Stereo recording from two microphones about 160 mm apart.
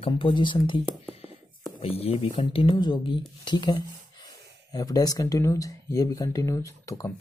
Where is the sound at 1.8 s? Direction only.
40° left (ahead or behind).